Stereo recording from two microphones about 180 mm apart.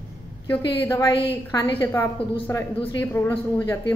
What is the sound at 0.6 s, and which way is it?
A woman's voice, 20° left (ahead or behind).